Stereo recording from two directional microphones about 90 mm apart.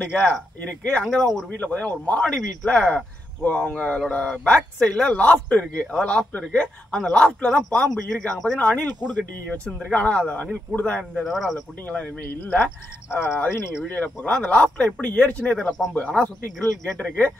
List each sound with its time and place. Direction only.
0.2 s speech: 15° left (ahead or behind)
1.0 s speech: centre (ahead or behind)
1.5 s speech: 15° left (ahead or behind)
11.2 s speech: centre (ahead or behind)
12.4 s speech: 25° left (ahead or behind)
13.9 s speech: 15° left (ahead or behind)